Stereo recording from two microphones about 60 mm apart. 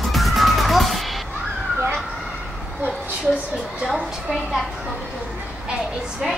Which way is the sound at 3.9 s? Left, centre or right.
Centre.